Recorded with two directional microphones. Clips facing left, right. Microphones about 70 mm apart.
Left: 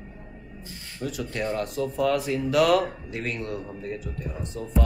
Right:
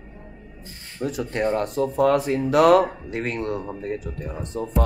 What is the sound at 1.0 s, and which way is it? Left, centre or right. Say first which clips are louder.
Speech: right 5 dB; right.